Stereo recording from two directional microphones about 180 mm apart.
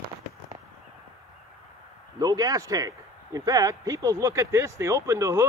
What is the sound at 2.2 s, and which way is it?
Speech, 20° right (ahead or behind).